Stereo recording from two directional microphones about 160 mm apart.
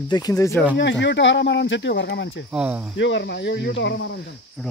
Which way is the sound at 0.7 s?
90° left.